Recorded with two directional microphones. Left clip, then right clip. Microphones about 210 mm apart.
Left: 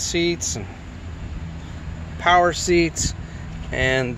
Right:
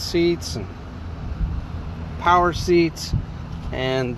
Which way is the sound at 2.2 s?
20° left (ahead or behind).